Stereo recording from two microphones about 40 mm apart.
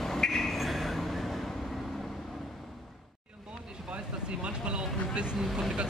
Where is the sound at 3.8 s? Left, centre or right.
Right.